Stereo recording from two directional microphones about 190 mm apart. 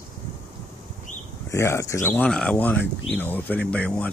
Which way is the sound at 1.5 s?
15° left (ahead or behind).